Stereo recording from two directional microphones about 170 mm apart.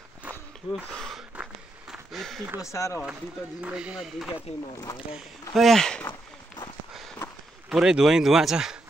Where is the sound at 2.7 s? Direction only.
15° left (ahead or behind).